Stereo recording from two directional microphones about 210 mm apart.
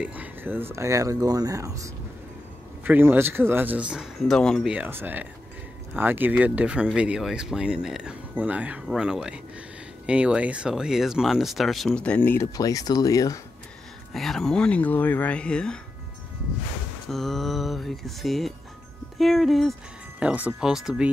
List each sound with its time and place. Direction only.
0.0 s speech: 5° right (ahead or behind); by 13.4 s 15° left (ahead or behind)
14.1 s speech: centre (ahead or behind)
17.1 s speech: centre (ahead or behind)